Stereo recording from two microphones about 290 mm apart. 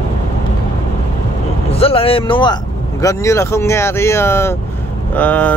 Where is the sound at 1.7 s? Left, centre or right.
Centre.